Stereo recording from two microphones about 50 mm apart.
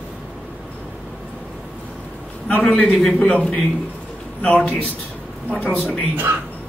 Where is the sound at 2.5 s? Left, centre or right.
Left.